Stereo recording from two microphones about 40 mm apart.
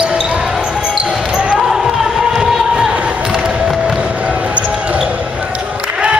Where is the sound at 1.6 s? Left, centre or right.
Centre.